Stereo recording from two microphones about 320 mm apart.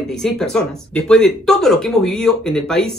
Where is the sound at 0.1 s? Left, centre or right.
Centre.